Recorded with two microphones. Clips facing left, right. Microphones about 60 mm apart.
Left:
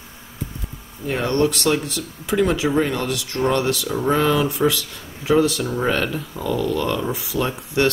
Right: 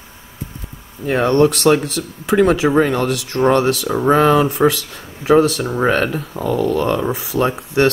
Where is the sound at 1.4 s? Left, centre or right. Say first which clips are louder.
Right 6 dB; right.